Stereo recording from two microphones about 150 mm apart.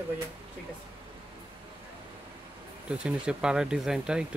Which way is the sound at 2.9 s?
5° right (ahead or behind).